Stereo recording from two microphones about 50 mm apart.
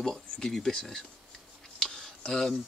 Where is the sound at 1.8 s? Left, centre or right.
Centre.